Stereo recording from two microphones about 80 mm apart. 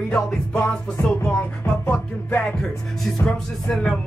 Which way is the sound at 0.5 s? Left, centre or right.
Centre.